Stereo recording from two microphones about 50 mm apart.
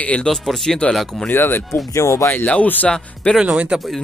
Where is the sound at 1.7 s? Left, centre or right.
Left.